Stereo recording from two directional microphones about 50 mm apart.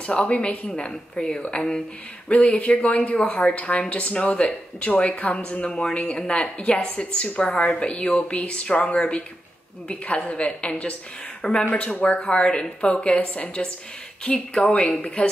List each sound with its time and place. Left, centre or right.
0.0 s speech: left
4.9 s speech: left